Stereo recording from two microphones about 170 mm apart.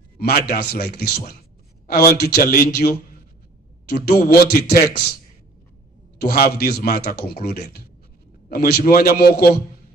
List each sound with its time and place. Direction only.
0.2 s a man's voice: 65° left (ahead or behind)
4.0 s a man's voice: 65° left (ahead or behind)
6.1 s a man's voice: 65° left (ahead or behind)
8.5 s a man's voice: 65° left (ahead or behind)